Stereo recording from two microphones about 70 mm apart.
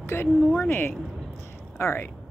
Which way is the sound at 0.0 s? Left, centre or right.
Left.